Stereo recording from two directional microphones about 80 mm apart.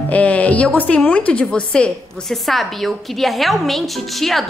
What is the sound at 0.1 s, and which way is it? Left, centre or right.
A woman's voice, centre.